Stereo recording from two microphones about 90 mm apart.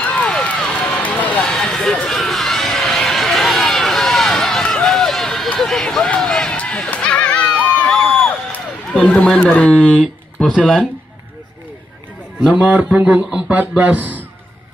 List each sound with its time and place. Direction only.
0.0 s run: 10° left (ahead or behind)
9.0 s speech: 15° left (ahead or behind)
12.4 s a man's voice: 15° right (ahead or behind)